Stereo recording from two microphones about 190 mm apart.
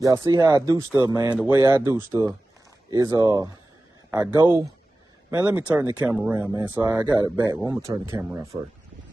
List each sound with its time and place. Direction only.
0.0 s speech: 20° right (ahead or behind)
4.1 s speech: 10° right (ahead or behind)